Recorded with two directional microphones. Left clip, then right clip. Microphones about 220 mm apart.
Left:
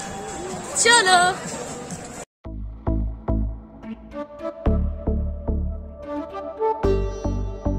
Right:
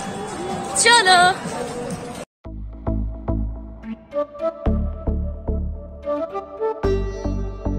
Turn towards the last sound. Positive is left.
turn(degrees=0)  # may be behind; listen again after turning